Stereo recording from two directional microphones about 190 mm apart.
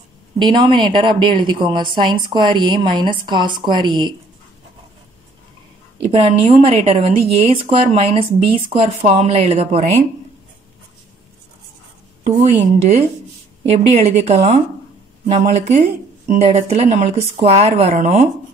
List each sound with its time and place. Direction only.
0.4 s a woman's voice: 25° right (ahead or behind)
5.9 s a woman's voice: 30° right (ahead or behind)
12.2 s a woman's voice: 35° right (ahead or behind)